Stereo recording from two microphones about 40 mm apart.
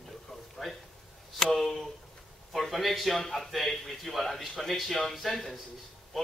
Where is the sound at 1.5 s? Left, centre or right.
Centre.